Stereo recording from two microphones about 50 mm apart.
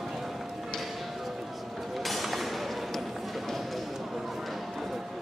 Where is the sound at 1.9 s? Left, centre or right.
Centre.